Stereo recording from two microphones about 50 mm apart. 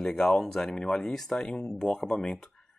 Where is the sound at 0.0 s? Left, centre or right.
Centre.